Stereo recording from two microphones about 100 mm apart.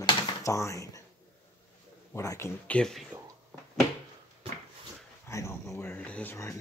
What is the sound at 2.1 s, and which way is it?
Speech, 25° left (ahead or behind).